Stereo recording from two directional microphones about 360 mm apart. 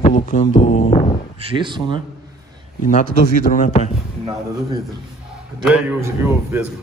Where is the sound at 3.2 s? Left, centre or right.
Left.